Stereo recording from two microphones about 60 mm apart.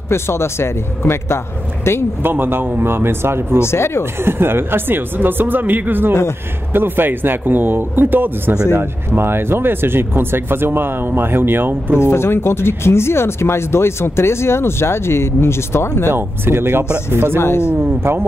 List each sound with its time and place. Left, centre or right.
0.1 s speech: left
2.2 s speech: right
3.6 s speech: left
4.0 s speech: right
12.0 s speech: left
16.1 s speech: right
17.4 s speech: left
17.7 s speech: right